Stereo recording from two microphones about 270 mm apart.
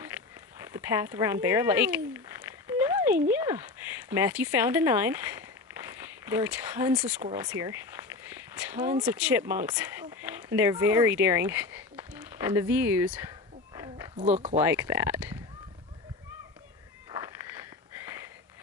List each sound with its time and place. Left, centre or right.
0.6 s a sound: centre
3.3 s speech: centre
6.2 s speech: centre
14.1 s speech: right
14.5 s speech: centre